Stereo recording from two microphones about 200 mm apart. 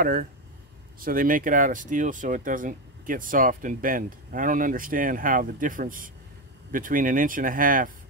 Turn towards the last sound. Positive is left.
turn(degrees=-45)  # may be behind; listen again after turning